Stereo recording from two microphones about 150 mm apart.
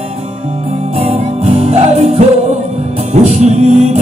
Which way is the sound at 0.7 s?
45° right (ahead or behind).